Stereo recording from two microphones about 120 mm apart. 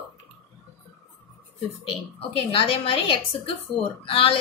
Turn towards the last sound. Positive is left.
turn(degrees=50)  # may be behind; listen again after turning